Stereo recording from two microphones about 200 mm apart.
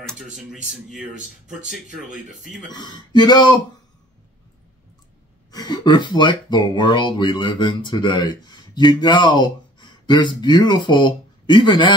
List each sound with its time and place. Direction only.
0.0 s a sound: centre (ahead or behind)
0.7 s speech: centre (ahead or behind)
2.7 s speech: 20° left (ahead or behind)
5.5 s speech: 20° left (ahead or behind)